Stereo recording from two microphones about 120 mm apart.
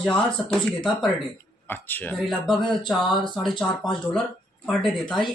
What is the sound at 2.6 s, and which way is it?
Speech, centre (ahead or behind).